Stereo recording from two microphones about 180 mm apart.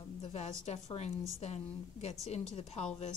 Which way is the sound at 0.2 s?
35° left (ahead or behind).